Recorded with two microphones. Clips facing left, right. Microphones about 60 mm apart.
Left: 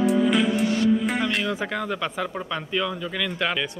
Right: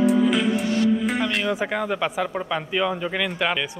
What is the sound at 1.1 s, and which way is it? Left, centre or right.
Speech, centre.